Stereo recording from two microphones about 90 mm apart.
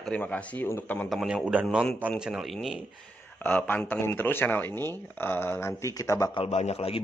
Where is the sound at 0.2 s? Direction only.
15° left (ahead or behind).